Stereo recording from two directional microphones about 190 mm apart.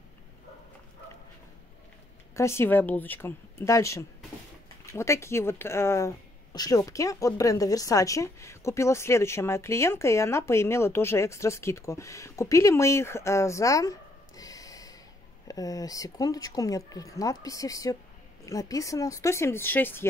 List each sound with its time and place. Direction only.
2.3 s speech: 15° left (ahead or behind)